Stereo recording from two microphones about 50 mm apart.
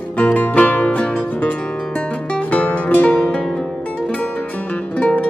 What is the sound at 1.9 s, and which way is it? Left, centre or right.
Music, left.